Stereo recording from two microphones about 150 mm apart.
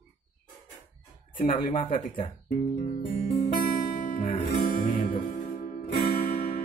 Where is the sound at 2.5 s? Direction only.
50° left (ahead or behind).